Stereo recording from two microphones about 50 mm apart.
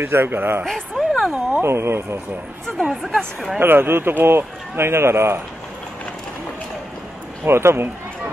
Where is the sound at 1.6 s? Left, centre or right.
Right.